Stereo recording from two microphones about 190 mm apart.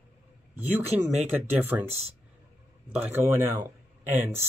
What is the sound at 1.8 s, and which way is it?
Speech, 30° right (ahead or behind).